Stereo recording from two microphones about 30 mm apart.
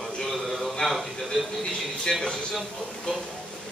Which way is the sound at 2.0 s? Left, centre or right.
Left.